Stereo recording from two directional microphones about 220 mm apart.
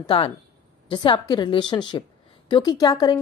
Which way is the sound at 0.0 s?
25° left (ahead or behind).